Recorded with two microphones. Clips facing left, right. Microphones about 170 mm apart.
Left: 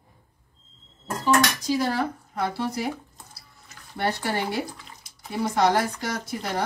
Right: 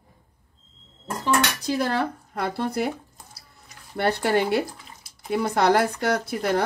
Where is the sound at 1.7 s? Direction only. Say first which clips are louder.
Even; 60° right (ahead or behind).